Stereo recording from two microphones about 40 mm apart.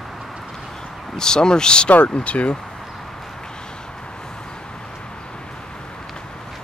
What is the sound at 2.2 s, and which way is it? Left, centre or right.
Speech, left.